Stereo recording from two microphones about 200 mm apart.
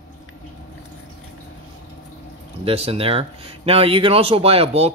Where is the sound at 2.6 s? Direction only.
30° right (ahead or behind).